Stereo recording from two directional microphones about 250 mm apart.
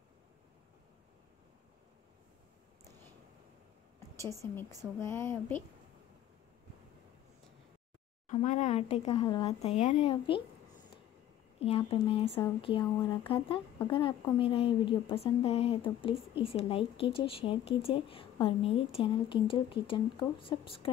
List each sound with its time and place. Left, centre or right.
4.2 s a woman's voice: centre
8.3 s a woman's voice: left
11.6 s a woman's voice: left